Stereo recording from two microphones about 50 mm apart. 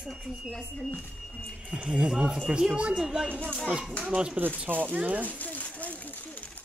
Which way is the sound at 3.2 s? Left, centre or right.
Right.